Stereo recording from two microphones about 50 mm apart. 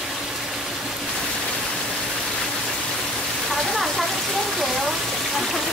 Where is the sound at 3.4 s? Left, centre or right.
Centre.